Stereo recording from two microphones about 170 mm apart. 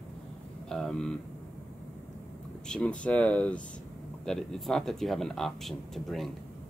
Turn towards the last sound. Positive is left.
turn(degrees=0)  # may be behind; listen again after turning